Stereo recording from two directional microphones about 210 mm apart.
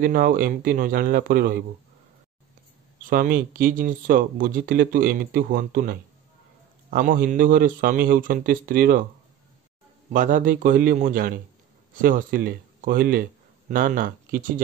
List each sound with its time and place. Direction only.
0.0 s speech: 45° right (ahead or behind)
3.1 s speech: 40° right (ahead or behind)
10.1 s speech: 40° right (ahead or behind)